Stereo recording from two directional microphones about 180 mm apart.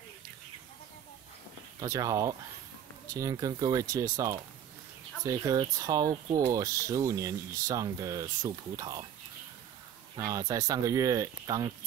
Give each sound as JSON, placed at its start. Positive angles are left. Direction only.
{"t": 1.8, "sound": "speech", "side_deg": -20}
{"t": 10.1, "sound": "speech", "side_deg": -20}